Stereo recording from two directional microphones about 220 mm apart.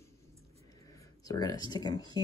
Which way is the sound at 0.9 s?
15° left (ahead or behind).